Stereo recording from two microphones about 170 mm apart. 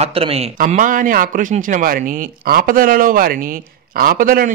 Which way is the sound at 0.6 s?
50° right (ahead or behind).